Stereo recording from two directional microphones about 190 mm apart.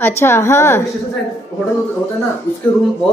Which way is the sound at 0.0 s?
15° left (ahead or behind).